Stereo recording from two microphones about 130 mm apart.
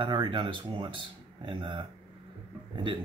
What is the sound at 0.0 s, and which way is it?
Speech, 35° right (ahead or behind).